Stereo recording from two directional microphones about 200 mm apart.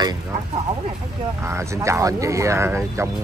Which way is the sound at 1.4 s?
15° right (ahead or behind).